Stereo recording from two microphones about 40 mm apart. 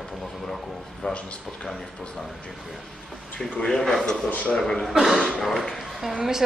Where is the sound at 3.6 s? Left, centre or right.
Centre.